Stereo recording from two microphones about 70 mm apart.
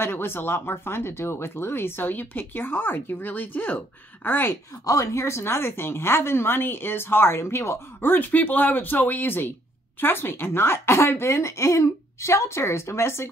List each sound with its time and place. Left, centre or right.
0.0 s speech: left
4.8 s speech: left